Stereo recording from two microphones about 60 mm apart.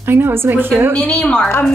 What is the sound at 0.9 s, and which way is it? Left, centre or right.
Speech, left.